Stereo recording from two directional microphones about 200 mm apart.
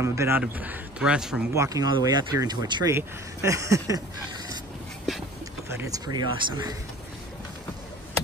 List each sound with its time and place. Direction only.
0.0 s a man's voice: 15° right (ahead or behind)
1.5 s speech: 15° right (ahead or behind)
5.7 s speech: 15° right (ahead or behind)